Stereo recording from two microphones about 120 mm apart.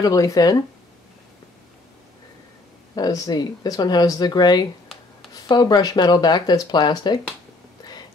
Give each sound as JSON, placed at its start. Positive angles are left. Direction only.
{"t": 0.0, "sound": "speech", "side_deg": 30}
{"t": 3.0, "sound": "speech", "side_deg": 35}